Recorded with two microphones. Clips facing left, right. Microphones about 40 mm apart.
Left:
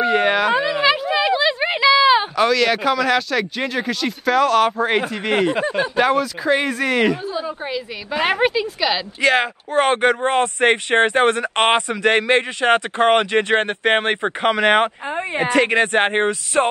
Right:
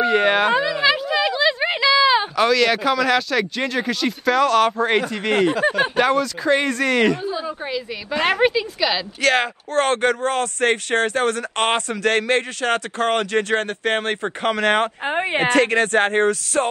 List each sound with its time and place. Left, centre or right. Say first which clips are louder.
0.0 s a sound: even; centre
1.0 s a woman's voice: left 1 dB; centre; by 14.5 s left
14.5 s speech: left 3 dB; left
15.0 s speech: right 2 dB; right
15.6 s speech: left 1 dB; left